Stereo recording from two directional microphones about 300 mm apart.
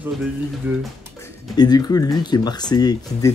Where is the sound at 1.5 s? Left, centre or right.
Centre.